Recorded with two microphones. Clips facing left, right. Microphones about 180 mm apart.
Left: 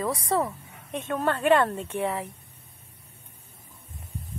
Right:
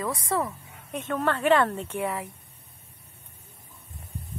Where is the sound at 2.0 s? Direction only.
30° left (ahead or behind).